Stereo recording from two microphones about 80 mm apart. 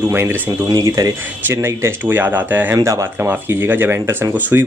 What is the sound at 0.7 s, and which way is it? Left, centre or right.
Speech, right.